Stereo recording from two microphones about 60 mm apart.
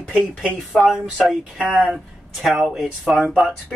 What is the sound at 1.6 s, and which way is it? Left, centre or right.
Speech, right.